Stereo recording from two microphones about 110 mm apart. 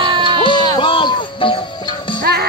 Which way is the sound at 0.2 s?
45° left (ahead or behind).